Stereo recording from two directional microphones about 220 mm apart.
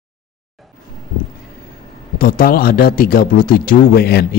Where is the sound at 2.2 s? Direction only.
40° left (ahead or behind).